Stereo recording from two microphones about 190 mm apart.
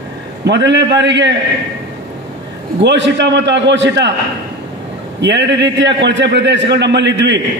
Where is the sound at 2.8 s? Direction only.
65° right (ahead or behind).